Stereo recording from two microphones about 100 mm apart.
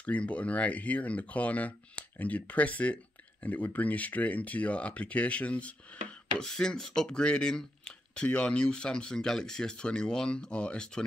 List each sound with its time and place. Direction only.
0.0 s speech: 15° left (ahead or behind)